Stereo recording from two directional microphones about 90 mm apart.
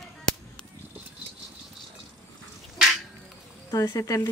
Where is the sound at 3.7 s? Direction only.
35° left (ahead or behind).